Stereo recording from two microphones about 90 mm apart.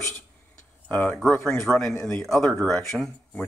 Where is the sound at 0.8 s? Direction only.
15° left (ahead or behind).